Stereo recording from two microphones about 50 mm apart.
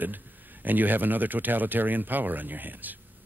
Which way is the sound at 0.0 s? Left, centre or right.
Right.